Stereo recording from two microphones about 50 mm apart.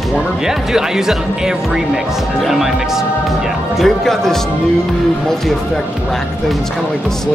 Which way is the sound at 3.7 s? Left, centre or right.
Centre.